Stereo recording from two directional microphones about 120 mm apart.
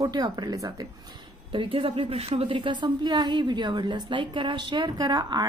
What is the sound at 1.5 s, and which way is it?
A woman's voice, 50° right (ahead or behind).